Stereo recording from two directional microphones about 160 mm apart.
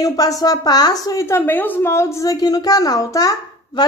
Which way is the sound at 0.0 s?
20° left (ahead or behind).